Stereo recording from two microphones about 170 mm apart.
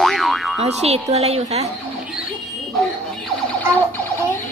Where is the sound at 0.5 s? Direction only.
40° right (ahead or behind).